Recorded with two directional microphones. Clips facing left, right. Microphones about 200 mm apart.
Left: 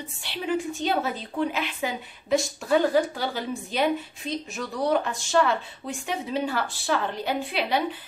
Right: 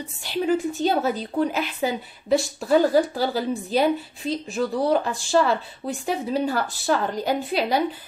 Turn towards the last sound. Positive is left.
turn(degrees=-40)  # may be behind; listen again after turning